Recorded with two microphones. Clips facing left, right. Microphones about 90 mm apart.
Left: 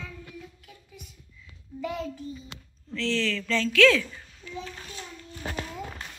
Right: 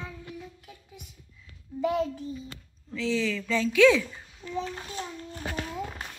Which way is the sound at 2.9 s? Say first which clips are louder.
Even; 10° right (ahead or behind).